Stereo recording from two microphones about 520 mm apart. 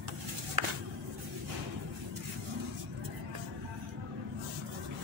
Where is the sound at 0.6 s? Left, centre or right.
Right.